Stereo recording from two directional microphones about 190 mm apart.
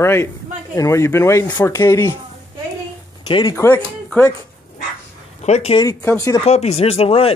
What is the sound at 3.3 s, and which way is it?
Speech, 25° left (ahead or behind).